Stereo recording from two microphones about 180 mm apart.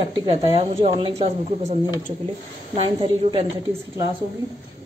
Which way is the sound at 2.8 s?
30° right (ahead or behind).